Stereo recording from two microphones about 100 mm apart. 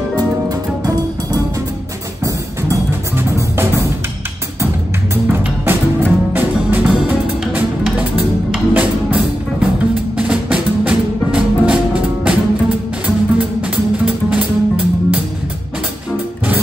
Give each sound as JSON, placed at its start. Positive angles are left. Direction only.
{"t": 0.5, "sound": "music", "side_deg": -40}
{"t": 2.2, "sound": "music", "side_deg": -30}
{"t": 5.3, "sound": "music", "side_deg": -20}